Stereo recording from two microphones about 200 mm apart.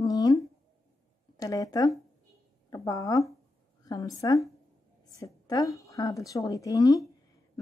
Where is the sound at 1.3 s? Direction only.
15° left (ahead or behind).